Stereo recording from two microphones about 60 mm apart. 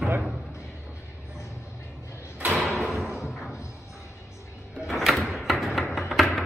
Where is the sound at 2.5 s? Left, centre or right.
Centre.